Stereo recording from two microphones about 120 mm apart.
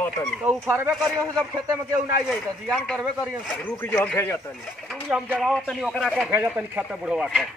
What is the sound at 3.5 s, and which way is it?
Speech, 15° left (ahead or behind).